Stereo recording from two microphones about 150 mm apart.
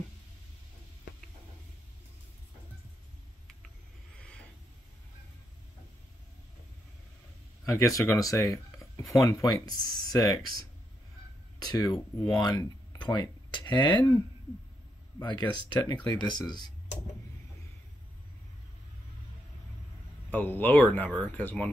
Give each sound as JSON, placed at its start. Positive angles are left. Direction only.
{"t": 7.6, "sound": "speech", "side_deg": 20}
{"t": 11.6, "sound": "speech", "side_deg": 25}
{"t": 15.1, "sound": "speech", "side_deg": 30}
{"t": 20.2, "sound": "speech", "side_deg": 10}